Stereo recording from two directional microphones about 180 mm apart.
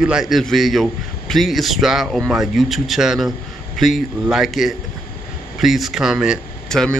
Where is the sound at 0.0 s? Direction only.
5° right (ahead or behind).